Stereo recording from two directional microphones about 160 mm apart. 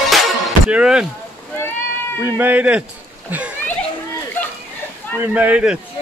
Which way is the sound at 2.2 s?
10° right (ahead or behind).